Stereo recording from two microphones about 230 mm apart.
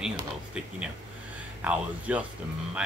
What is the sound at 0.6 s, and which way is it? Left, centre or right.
Speech, centre.